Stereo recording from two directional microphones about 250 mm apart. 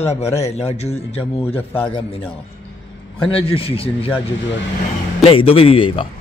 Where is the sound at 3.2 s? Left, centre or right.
Left.